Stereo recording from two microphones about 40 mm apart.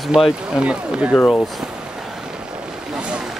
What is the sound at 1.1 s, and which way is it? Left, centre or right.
Speech, left.